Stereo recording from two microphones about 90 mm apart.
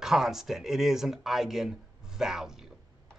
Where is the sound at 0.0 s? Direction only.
5° right (ahead or behind).